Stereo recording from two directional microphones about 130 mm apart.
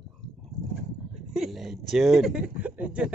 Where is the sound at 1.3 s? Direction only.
Centre (ahead or behind).